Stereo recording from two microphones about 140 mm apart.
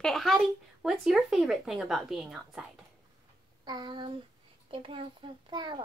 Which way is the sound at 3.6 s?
30° right (ahead or behind).